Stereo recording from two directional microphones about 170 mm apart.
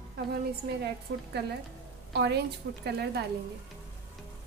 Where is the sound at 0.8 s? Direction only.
75° right (ahead or behind).